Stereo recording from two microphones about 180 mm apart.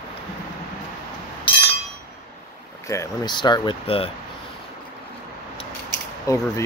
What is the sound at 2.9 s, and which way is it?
Speech, 20° left (ahead or behind).